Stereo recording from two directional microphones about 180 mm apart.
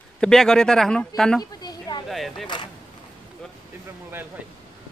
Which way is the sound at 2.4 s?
25° left (ahead or behind).